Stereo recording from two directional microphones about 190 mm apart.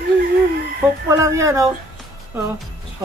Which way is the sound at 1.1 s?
15° right (ahead or behind).